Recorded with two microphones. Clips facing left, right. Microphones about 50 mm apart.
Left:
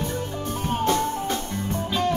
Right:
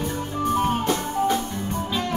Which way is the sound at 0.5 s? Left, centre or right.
Right.